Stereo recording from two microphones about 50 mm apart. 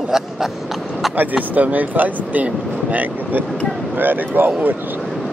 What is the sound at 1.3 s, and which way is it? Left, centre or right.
Speech, right.